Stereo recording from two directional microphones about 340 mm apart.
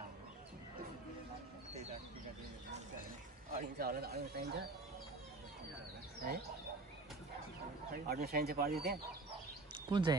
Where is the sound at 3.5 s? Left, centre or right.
Right.